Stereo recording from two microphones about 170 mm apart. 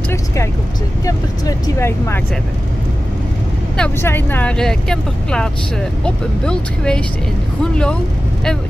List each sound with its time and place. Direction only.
1.0 s speech: 20° left (ahead or behind)
3.7 s speech: 10° left (ahead or behind)